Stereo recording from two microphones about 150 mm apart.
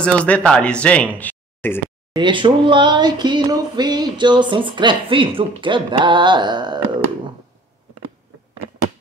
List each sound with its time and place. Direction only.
0.0 s speech: 10° left (ahead or behind)
2.1 s speech: 35° right (ahead or behind)